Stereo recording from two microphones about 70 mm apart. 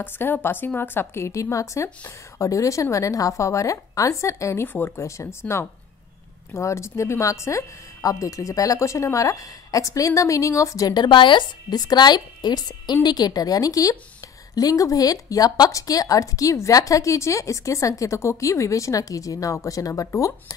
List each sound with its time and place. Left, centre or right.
0.0 s a woman's voice: left
4.7 s speech: left
5.0 s a woman's voice: left
10.9 s a woman's voice: left